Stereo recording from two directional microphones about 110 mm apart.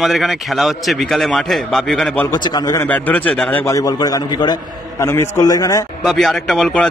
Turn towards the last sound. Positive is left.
turn(degrees=5)  # may be behind; listen again after turning